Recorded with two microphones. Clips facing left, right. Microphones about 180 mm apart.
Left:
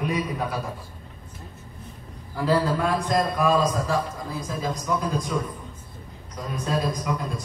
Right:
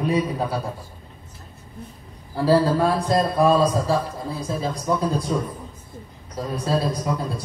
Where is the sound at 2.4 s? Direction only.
30° right (ahead or behind).